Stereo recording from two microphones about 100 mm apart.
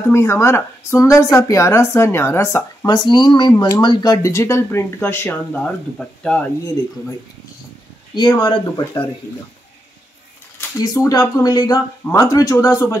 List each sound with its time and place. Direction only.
0.1 s speech: 25° left (ahead or behind)
2.9 s speech: 45° left (ahead or behind); by 5.4 s 25° left (ahead or behind)
5.4 s speech: 10° left (ahead or behind)
8.1 s speech: 45° left (ahead or behind)
10.8 s speech: 35° left (ahead or behind)